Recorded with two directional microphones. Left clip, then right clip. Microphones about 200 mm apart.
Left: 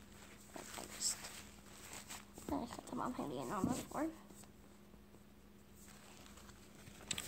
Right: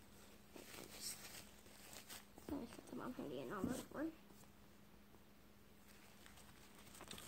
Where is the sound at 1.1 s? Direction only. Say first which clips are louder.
Left 11 dB; 30° left (ahead or behind).